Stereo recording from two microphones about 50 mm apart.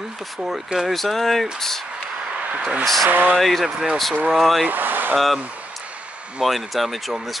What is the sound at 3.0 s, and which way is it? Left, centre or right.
Speech, right.